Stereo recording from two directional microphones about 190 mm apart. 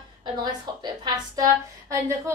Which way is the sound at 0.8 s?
20° right (ahead or behind).